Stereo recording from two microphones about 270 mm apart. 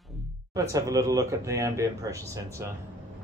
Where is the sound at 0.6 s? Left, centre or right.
Centre.